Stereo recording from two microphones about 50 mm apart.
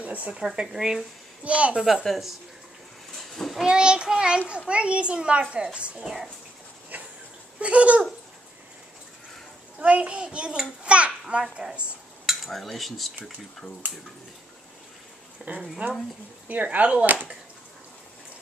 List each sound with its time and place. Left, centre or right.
0.0 s a sound: right
0.3 s speech: centre
1.4 s a child's voice: right
2.0 s speech: centre
3.3 s a sound: centre
3.6 s a child's voice: centre
6.0 s speech: centre
7.6 s a child's voice: right
9.8 s a child's voice: right
12.4 s speech: centre
15.5 s speech: right